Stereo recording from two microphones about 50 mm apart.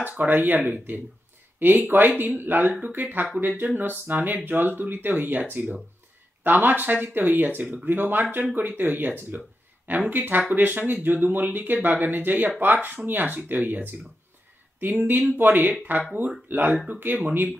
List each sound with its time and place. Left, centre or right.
0.0 s speech: right
16.7 s speech: right
17.0 s speech: right